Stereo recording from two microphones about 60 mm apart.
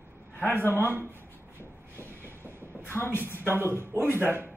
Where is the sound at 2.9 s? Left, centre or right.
Left.